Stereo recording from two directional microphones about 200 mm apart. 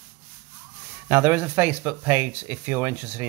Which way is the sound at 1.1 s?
10° right (ahead or behind).